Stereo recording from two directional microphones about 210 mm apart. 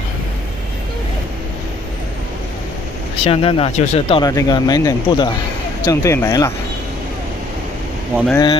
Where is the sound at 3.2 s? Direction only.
25° left (ahead or behind).